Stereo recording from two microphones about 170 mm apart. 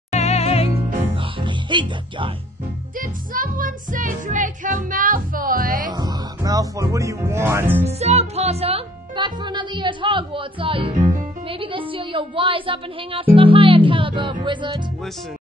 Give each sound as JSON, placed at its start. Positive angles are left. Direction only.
{"t": 0.1, "sound": "music", "side_deg": 40}
{"t": 1.1, "sound": "music", "side_deg": -30}
{"t": 3.0, "sound": "music", "side_deg": -55}
{"t": 5.9, "sound": "speech", "side_deg": -25}
{"t": 7.8, "sound": "a woman's voice", "side_deg": -40}